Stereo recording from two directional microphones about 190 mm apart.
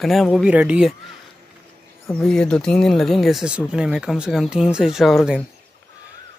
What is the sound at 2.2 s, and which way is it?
Speech, 5° left (ahead or behind).